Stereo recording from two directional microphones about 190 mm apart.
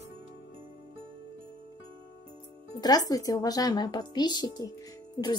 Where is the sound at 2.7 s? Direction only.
20° left (ahead or behind).